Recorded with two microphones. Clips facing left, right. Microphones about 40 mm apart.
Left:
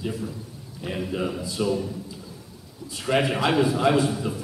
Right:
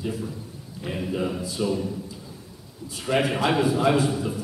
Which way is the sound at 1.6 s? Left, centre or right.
Left.